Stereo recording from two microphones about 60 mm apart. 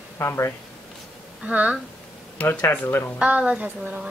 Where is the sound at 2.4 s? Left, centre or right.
Left.